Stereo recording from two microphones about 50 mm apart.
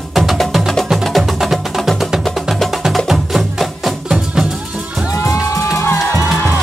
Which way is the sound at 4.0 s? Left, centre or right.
Centre.